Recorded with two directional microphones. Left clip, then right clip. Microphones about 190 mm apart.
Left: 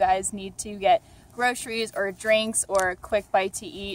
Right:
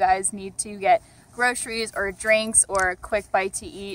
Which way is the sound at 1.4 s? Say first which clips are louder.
Right 2 dB; 15° left (ahead or behind).